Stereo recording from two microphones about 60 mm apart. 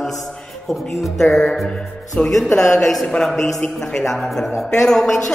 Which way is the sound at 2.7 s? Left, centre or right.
Centre.